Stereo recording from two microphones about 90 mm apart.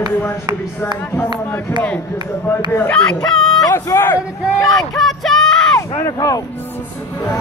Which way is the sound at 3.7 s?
30° left (ahead or behind).